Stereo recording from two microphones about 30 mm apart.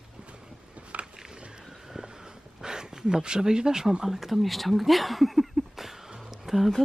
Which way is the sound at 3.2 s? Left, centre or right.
Right.